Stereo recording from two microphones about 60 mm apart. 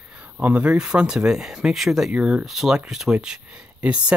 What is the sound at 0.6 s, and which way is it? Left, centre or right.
Speech, centre.